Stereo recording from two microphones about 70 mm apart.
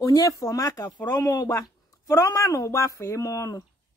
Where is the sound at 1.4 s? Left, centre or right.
Left.